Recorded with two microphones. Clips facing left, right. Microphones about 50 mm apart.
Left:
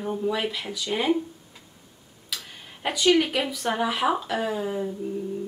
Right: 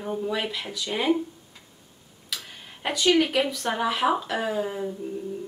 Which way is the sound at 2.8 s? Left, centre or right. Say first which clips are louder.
Left 1 dB; centre.